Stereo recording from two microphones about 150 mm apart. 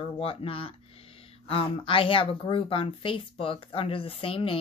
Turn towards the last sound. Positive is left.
turn(degrees=35)  # may be behind; listen again after turning